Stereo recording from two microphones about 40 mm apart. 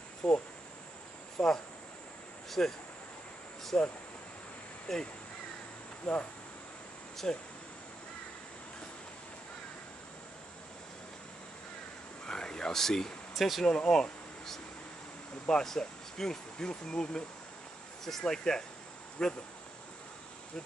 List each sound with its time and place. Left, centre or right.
0.2 s speech: left
1.4 s speech: centre
2.6 s speech: centre
3.7 s speech: left
4.9 s speech: centre
6.1 s speech: left
7.2 s speech: left
12.3 s a sound: centre
13.3 s speech: centre
13.7 s speech: centre
15.6 s speech: centre
18.2 s speech: centre